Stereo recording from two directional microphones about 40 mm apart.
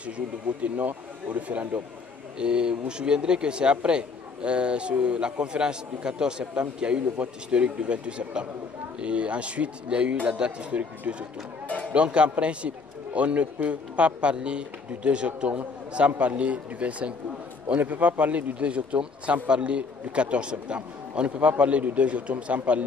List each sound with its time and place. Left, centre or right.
0.0 s speech: right
2.3 s a man's voice: right
11.6 s music: left
11.9 s a man's voice: right